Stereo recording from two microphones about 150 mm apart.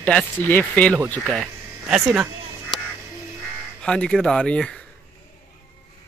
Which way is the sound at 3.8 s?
5° left (ahead or behind).